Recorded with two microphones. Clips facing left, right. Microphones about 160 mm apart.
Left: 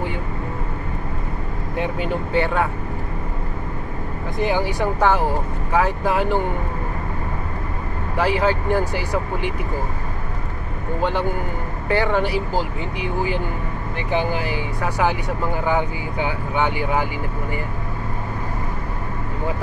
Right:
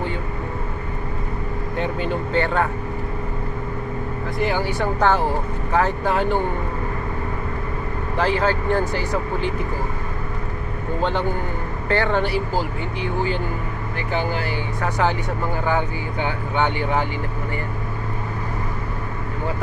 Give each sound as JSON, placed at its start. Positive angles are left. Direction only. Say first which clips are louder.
{"t": 1.8, "sound": "speech", "louder": "left 1 dB", "side_deg": 10}
{"t": 4.4, "sound": "speech", "louder": "left 2 dB", "side_deg": 15}
{"t": 8.2, "sound": "speech", "louder": "left 1 dB", "side_deg": 10}
{"t": 11.0, "sound": "speech", "louder": "left 1 dB", "side_deg": 10}